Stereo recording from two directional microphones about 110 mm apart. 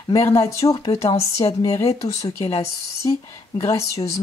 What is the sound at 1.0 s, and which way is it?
Speech, 60° left (ahead or behind).